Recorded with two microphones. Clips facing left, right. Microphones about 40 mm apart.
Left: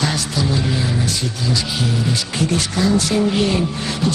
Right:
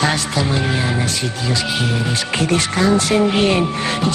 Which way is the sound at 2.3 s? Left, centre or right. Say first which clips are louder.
Right 4 dB; right.